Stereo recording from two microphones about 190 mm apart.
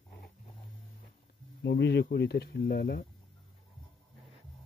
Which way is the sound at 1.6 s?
65° left (ahead or behind).